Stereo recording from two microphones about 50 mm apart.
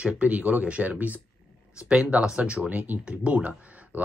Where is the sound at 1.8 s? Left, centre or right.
Centre.